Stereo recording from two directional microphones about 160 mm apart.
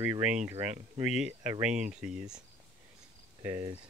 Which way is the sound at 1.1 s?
5° right (ahead or behind).